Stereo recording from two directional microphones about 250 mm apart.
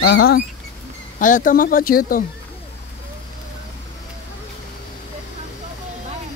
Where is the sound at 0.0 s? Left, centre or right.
Left.